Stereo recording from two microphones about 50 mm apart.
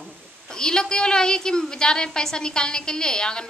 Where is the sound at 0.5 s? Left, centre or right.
Centre.